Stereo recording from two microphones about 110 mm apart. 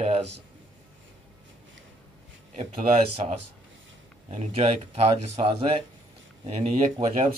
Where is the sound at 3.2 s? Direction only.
70° right (ahead or behind).